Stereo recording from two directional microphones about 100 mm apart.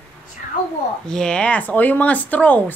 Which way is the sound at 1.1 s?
10° left (ahead or behind).